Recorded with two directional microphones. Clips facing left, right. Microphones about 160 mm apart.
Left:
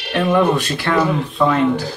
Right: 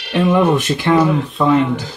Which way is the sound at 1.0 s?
Centre (ahead or behind).